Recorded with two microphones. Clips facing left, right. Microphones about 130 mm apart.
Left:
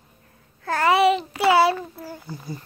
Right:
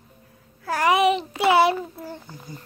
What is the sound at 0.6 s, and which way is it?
Babbling, 10° right (ahead or behind).